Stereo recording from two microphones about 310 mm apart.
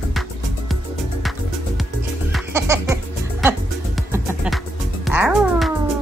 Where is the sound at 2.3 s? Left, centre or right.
Centre.